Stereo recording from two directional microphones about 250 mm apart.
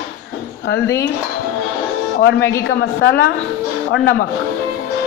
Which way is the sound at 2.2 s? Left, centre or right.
Left.